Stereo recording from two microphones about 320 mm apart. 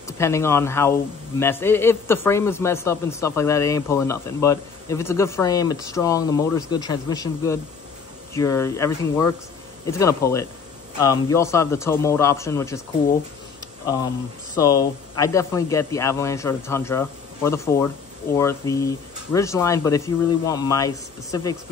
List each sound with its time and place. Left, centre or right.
0.2 s a man's voice: centre
14.6 s a man's voice: centre